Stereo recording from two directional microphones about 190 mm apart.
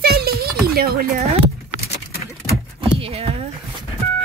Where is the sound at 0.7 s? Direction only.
50° right (ahead or behind).